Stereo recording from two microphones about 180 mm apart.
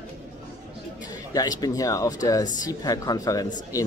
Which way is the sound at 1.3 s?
20° left (ahead or behind).